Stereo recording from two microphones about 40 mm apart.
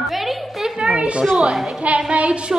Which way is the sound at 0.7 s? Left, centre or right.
Right.